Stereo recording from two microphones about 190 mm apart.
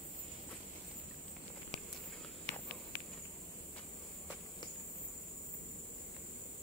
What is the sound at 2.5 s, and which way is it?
Walk, 35° right (ahead or behind).